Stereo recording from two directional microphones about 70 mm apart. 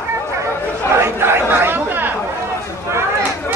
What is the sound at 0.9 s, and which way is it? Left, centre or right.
Chatter, right.